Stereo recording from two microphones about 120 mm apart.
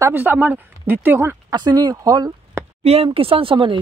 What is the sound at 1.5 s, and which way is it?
Speech, 35° right (ahead or behind).